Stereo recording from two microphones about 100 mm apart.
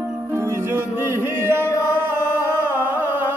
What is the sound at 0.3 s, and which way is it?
Music, 25° right (ahead or behind).